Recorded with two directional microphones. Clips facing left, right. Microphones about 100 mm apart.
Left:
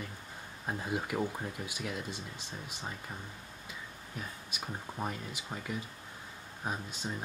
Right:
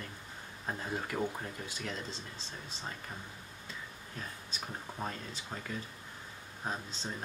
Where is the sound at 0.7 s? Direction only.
15° left (ahead or behind).